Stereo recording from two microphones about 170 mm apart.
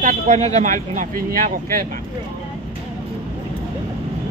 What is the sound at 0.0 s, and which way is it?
Speech, 40° right (ahead or behind).